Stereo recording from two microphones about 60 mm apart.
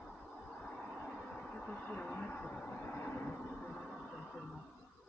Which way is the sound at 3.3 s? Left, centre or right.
Centre.